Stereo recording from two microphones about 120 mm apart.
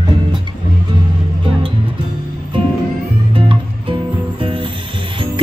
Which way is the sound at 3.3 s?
45° right (ahead or behind).